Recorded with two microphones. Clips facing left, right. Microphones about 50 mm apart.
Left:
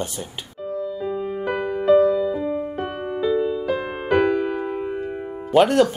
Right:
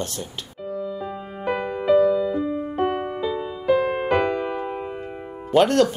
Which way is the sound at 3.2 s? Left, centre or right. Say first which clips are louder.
Left 6 dB; centre.